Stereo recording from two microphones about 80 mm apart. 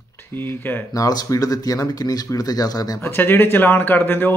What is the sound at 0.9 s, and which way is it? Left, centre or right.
Speech, left.